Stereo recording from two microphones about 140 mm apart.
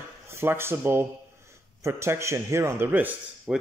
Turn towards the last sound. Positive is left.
turn(degrees=-5)  # may be behind; listen again after turning